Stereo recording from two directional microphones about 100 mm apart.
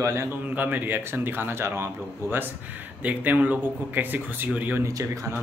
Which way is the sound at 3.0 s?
15° right (ahead or behind).